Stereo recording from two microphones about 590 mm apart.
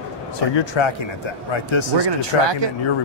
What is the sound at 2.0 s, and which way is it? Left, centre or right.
Speech, right.